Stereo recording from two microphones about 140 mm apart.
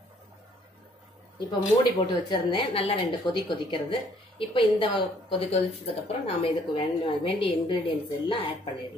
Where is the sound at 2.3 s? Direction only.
35° left (ahead or behind).